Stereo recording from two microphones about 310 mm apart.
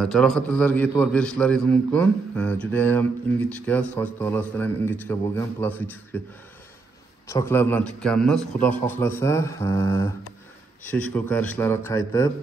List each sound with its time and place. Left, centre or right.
0.0 s a man's voice: centre
7.2 s a man's voice: centre